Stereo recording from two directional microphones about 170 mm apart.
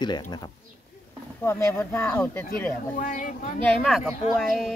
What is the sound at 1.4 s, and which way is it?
Speech, 15° left (ahead or behind).